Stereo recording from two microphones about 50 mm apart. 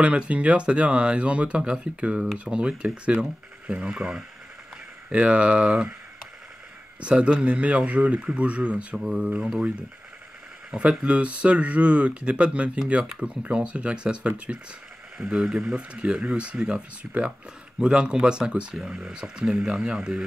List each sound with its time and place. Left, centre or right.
0.0 s speech: right
7.0 s speech: right
8.9 s speech: centre
10.7 s speech: right
15.9 s speech: right